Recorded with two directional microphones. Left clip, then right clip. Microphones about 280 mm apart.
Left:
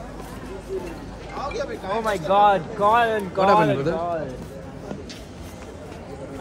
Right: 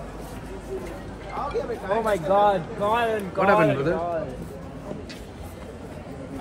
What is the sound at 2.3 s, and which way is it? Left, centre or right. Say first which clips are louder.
Speech: left 6 dB; left.